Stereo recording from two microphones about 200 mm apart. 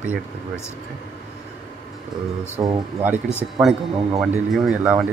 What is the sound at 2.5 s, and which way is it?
Speech, 15° right (ahead or behind).